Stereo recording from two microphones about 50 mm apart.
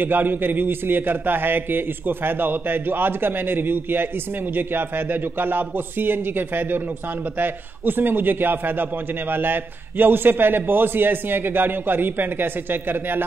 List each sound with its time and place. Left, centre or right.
0.0 s a man's voice: right